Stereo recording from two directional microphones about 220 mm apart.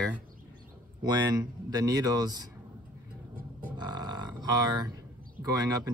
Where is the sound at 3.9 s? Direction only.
20° right (ahead or behind).